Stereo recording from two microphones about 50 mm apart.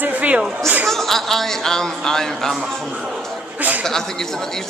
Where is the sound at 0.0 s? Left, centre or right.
Right.